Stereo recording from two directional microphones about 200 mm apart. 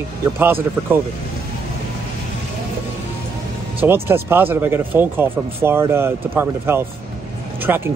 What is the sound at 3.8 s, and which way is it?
Speech, 10° right (ahead or behind).